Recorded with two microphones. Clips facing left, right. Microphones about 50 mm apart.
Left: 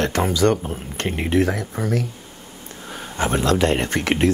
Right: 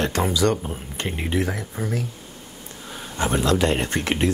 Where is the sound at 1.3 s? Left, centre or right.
Left.